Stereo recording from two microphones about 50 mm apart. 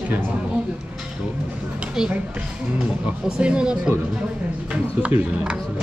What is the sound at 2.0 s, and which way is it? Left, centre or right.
Speech, centre.